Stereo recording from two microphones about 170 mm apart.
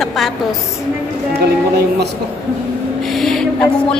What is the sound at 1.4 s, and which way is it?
Speech, 70° right (ahead or behind).